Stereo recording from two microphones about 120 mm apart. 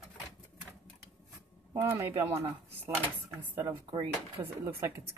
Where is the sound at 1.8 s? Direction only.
20° right (ahead or behind).